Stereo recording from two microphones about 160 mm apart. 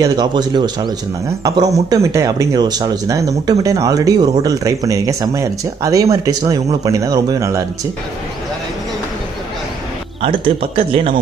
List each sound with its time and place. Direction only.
0.0 s speech: 25° right (ahead or behind)
10.2 s a man's voice: 35° right (ahead or behind)